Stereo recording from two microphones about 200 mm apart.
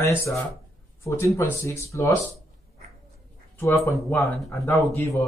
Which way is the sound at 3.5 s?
15° left (ahead or behind).